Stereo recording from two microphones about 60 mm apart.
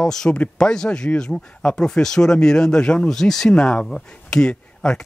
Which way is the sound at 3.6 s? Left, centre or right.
Centre.